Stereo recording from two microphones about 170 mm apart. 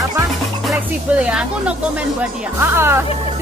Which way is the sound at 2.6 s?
15° right (ahead or behind).